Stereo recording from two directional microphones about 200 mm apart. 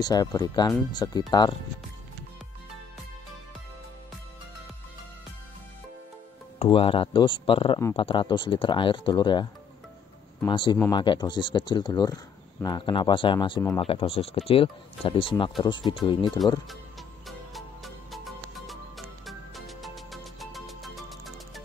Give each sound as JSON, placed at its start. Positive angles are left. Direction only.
{"t": 0.0, "sound": "speech", "side_deg": 20}
{"t": 6.6, "sound": "speech", "side_deg": 25}
{"t": 10.5, "sound": "speech", "side_deg": 25}
{"t": 17.6, "sound": "music", "side_deg": 0}